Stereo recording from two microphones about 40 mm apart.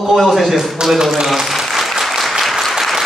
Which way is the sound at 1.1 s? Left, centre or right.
Centre.